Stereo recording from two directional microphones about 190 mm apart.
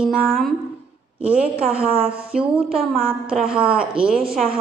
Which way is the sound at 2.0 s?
5° right (ahead or behind).